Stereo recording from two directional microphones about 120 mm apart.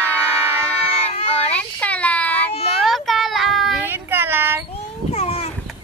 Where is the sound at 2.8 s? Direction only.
Centre (ahead or behind).